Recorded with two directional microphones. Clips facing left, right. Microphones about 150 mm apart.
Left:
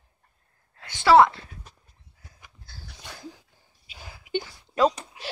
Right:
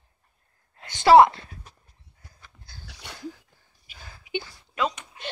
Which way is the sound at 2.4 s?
15° left (ahead or behind).